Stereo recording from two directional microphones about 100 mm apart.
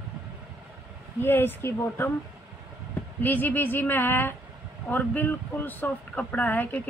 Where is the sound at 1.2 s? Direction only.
20° left (ahead or behind).